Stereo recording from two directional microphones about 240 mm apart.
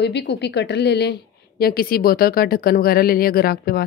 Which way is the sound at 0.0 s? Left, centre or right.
Left.